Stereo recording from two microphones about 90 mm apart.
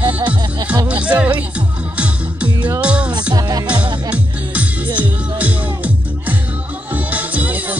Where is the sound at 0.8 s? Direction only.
15° right (ahead or behind).